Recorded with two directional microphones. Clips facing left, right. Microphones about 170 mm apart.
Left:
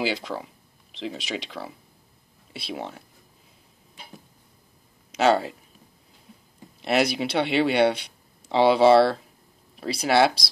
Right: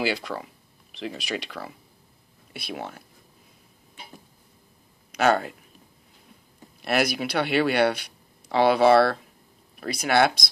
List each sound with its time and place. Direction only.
0.0 s speech: 20° left (ahead or behind)
5.1 s speech: 25° left (ahead or behind)
6.8 s speech: 25° left (ahead or behind)